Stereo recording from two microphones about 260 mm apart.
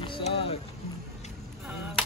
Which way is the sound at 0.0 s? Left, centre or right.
Centre.